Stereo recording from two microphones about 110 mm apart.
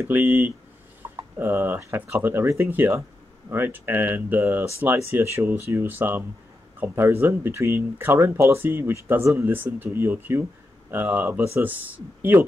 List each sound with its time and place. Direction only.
0.0 s speech: 15° right (ahead or behind)